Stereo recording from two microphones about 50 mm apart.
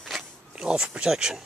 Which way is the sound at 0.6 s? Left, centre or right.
Centre.